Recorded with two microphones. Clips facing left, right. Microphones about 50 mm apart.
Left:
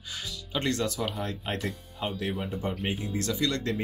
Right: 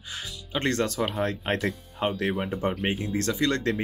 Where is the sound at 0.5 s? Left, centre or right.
Right.